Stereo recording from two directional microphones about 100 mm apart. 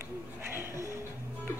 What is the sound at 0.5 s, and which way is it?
Music, 25° right (ahead or behind).